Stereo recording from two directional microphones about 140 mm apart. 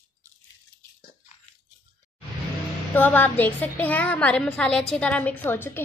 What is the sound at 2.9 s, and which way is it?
A woman's voice, 15° left (ahead or behind).